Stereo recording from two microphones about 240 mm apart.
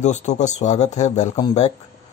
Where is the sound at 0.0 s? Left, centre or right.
Left.